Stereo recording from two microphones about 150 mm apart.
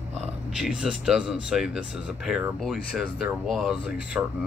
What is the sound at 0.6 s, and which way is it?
Speech, 5° right (ahead or behind).